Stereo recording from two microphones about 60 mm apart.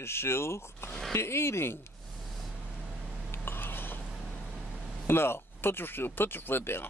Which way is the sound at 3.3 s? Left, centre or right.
Left.